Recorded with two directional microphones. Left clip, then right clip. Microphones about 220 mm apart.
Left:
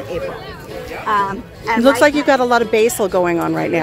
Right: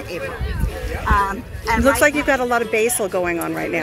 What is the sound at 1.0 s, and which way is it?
Speech, 15° right (ahead or behind).